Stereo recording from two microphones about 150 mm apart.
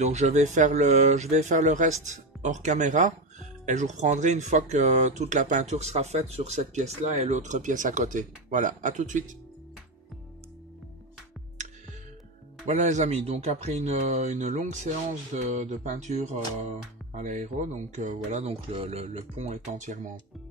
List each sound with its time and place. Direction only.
0.0 s speech: 50° right (ahead or behind)
12.6 s speech: 50° right (ahead or behind)